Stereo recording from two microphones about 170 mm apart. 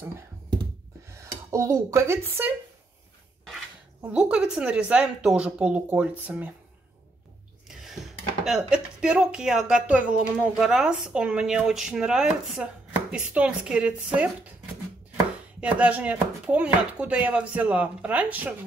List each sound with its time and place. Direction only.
1.1 s speech: 15° right (ahead or behind)
4.0 s speech: 5° right (ahead or behind)
7.6 s a sound: centre (ahead or behind)
8.5 s speech: 5° right (ahead or behind)
15.6 s speech: 10° right (ahead or behind)